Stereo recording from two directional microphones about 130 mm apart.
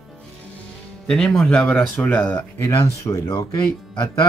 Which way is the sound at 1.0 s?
5° left (ahead or behind).